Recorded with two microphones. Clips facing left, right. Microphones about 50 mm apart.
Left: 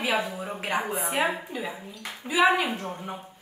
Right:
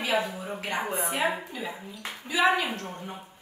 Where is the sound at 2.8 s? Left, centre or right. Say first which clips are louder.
Left 3 dB; centre.